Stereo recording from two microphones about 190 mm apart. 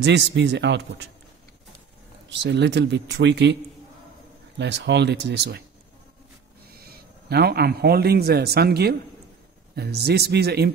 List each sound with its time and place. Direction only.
0.0 s speech: 65° right (ahead or behind)
2.2 s speech: 65° right (ahead or behind)
4.6 s speech: 65° right (ahead or behind)
6.7 s speech: 55° right (ahead or behind)